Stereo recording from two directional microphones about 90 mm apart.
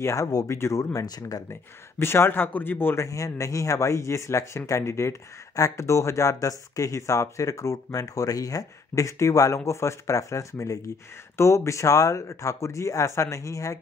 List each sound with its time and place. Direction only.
0.0 s speech: 35° left (ahead or behind)
1.5 s speech: 25° left (ahead or behind)
3.1 s speech: 35° left (ahead or behind)